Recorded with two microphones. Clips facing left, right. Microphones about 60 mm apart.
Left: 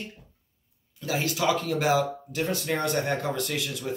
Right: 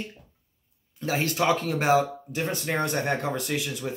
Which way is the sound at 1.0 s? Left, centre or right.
Right.